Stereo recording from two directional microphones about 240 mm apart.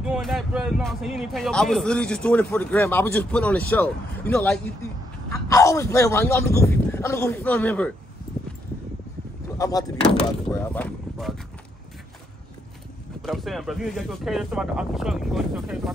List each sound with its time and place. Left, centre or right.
0.0 s a man's voice: centre
9.6 s speech: centre
13.2 s a man's voice: centre